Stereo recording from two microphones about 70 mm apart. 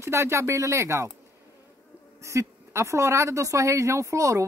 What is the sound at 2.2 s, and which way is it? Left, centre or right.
Speech, right.